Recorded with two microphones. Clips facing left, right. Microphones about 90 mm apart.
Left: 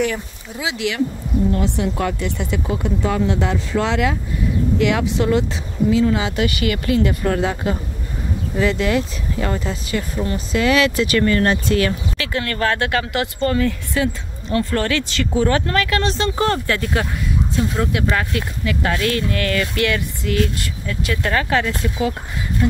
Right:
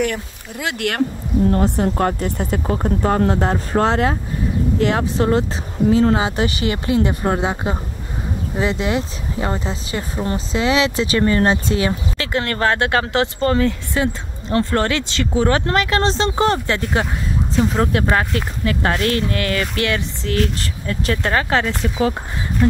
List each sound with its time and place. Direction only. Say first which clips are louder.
0.6 s speech: right 1 dB; 55° right (ahead or behind)
1.5 s speech: right 3 dB; 45° right (ahead or behind)